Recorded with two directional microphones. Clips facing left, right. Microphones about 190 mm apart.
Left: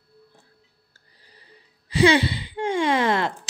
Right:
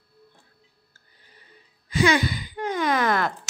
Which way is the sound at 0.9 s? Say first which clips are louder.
Left 2 dB; 35° left (ahead or behind).